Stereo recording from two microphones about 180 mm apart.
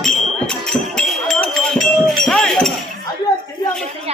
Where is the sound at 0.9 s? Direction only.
5° left (ahead or behind).